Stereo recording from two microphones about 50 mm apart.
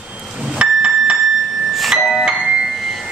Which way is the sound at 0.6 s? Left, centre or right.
Centre.